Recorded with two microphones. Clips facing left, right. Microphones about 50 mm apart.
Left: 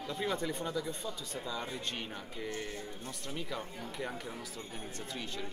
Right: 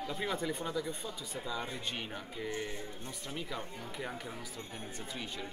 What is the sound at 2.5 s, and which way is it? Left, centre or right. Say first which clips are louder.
Speech: right 2 dB; right.